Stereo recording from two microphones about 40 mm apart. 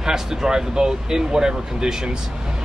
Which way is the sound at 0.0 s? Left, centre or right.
Centre.